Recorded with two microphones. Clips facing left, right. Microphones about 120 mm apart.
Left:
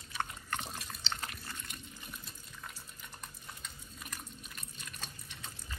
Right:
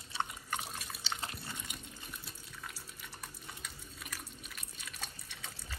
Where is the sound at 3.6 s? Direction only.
Centre (ahead or behind).